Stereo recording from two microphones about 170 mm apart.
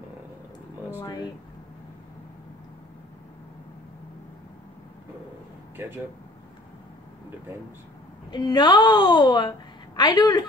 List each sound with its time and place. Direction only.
1.0 s a woman's voice: 20° left (ahead or behind)
8.3 s a woman's voice: 25° left (ahead or behind)